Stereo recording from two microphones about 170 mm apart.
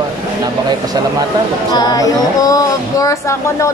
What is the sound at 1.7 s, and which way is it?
Speech, 25° left (ahead or behind).